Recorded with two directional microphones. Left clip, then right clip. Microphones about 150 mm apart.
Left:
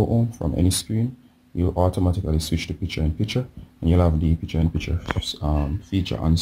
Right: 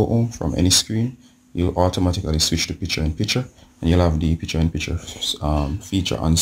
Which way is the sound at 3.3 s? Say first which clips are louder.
Right 2 dB; 5° left (ahead or behind).